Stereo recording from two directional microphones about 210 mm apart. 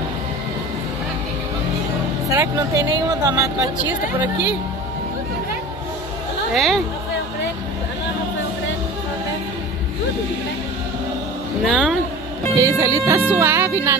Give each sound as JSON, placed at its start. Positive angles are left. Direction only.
{"t": 2.2, "sound": "speech", "side_deg": -15}
{"t": 6.5, "sound": "speech", "side_deg": 0}
{"t": 11.6, "sound": "speech", "side_deg": 0}
{"t": 12.5, "sound": "speech", "side_deg": -15}